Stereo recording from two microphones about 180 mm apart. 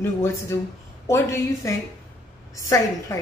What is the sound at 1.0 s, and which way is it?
A woman's voice, 15° left (ahead or behind).